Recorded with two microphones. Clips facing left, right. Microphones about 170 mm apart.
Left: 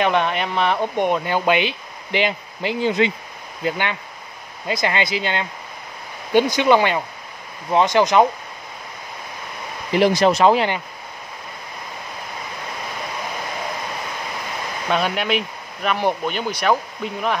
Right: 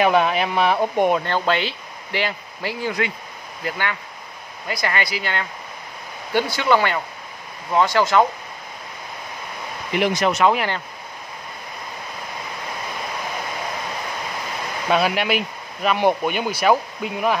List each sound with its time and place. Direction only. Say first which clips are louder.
0.0 s speech: right 2 dB; 5° right (ahead or behind)
1.2 s speech: left 2 dB; 15° left (ahead or behind)
9.9 s speech: left 4 dB; 35° left (ahead or behind)
14.9 s speech: right 1 dB; 5° right (ahead or behind)